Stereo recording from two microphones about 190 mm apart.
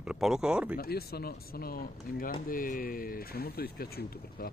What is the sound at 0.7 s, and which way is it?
Speech, 55° left (ahead or behind).